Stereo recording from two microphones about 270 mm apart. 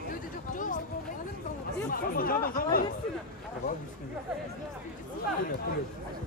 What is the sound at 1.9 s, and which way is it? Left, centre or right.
Speech, left.